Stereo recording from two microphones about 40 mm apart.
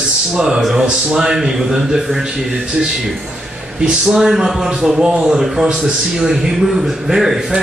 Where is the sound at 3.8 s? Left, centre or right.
Centre.